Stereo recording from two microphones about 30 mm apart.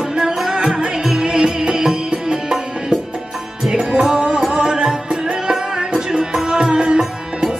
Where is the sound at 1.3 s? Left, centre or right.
Right.